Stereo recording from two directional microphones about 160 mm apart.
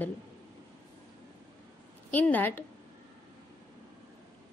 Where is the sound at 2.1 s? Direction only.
10° left (ahead or behind).